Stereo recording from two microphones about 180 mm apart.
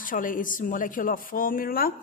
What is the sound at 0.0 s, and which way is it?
A woman's voice, 50° left (ahead or behind).